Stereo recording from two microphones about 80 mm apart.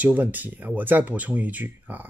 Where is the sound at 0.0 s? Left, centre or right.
Centre.